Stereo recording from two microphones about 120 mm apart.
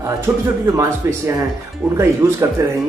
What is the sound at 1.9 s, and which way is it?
Speech, 25° right (ahead or behind).